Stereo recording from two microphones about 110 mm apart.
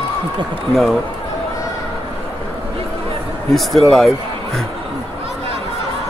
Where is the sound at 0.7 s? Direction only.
Centre (ahead or behind).